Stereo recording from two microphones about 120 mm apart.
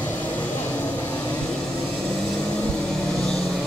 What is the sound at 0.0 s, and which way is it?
Vehicle, 15° left (ahead or behind).